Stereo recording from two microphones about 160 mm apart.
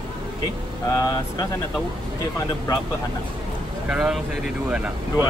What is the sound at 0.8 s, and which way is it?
Speech, 20° left (ahead or behind).